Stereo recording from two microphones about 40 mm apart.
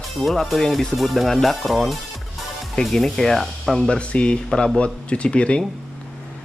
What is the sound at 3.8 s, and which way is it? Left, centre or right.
Speech, left.